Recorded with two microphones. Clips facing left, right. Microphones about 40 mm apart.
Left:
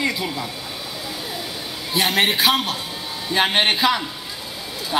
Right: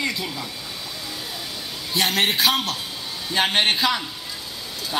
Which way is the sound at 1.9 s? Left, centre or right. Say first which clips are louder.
Left 2 dB; centre.